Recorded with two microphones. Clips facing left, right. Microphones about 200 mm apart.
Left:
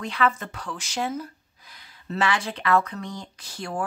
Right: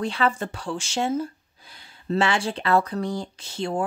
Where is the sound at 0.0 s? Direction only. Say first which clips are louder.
Right 1 dB; 30° right (ahead or behind).